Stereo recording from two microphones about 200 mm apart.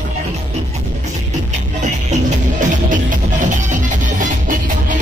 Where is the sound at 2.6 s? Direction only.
40° right (ahead or behind).